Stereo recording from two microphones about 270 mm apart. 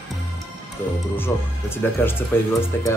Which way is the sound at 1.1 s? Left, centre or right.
Centre.